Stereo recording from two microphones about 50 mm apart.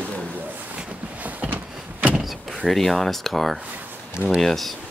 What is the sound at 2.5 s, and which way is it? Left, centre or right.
Speech, centre.